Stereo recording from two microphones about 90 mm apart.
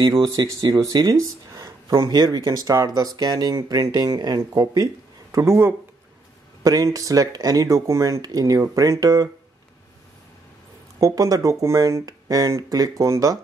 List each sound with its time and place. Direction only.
0.0 s speech: 45° right (ahead or behind)
5.3 s speech: 35° right (ahead or behind)
6.6 s speech: 40° right (ahead or behind)
11.0 s speech: 40° right (ahead or behind)